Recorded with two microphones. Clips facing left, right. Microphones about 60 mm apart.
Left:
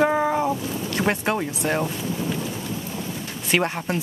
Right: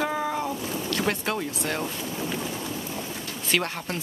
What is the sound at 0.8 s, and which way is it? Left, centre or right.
Speech, left.